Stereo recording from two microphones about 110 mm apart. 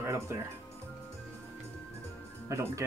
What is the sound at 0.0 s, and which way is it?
Music, 25° right (ahead or behind).